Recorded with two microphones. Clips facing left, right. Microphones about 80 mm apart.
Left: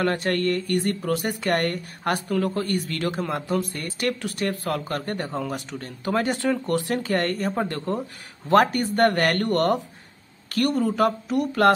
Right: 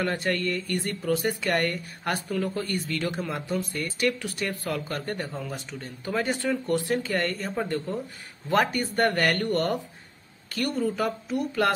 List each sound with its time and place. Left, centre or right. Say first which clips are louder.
0.0 s speech: left 4 dB; left